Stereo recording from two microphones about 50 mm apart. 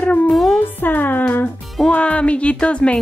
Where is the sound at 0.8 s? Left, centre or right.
Left.